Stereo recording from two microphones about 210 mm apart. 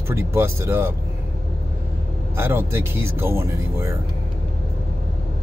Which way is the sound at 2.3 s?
10° right (ahead or behind).